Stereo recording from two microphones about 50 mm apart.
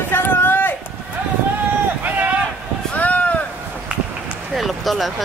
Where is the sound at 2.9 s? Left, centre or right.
Left.